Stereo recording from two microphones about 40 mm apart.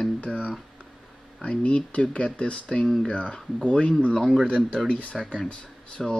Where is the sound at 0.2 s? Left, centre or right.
Left.